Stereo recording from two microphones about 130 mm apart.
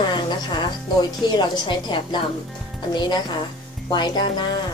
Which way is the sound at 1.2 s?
35° left (ahead or behind).